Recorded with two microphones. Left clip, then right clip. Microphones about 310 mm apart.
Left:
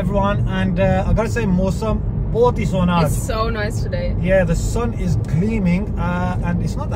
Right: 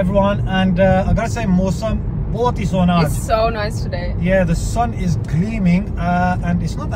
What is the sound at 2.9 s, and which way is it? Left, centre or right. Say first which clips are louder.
Speech: right 4 dB; centre.